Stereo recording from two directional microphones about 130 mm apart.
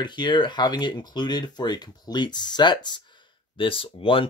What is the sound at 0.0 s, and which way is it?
Speech, 35° left (ahead or behind).